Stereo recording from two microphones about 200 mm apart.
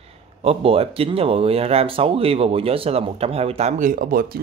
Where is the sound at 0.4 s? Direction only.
30° right (ahead or behind).